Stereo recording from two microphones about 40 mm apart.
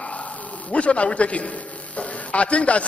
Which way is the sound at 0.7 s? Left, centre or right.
Left.